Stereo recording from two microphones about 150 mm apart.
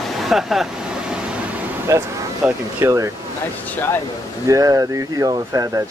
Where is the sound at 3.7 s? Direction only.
15° left (ahead or behind).